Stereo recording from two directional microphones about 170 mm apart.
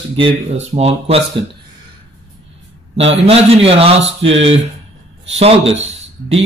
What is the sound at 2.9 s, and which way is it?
Speech, 35° right (ahead or behind).